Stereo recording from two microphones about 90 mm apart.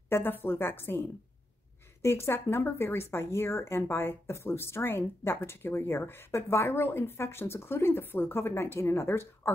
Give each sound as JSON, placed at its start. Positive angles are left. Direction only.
{"t": 0.1, "sound": "speech", "side_deg": 25}